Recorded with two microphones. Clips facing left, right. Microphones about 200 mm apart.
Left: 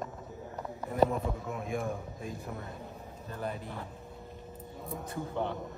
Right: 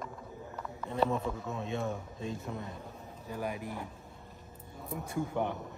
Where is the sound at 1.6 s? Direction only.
25° right (ahead or behind).